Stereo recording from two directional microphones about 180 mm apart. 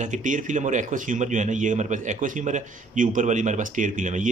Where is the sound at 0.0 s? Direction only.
45° right (ahead or behind).